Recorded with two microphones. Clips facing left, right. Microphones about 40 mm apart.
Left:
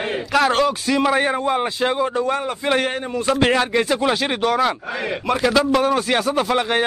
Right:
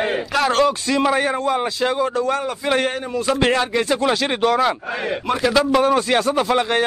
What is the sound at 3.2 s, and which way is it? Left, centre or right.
Speech, centre.